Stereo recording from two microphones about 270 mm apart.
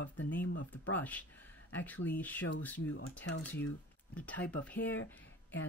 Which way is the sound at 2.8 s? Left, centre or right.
Left.